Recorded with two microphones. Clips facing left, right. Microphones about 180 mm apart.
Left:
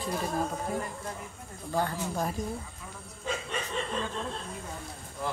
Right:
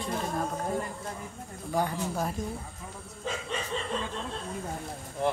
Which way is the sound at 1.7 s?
15° right (ahead or behind).